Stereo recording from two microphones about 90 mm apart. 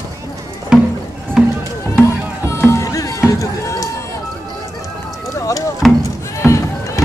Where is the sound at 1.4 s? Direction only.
5° right (ahead or behind).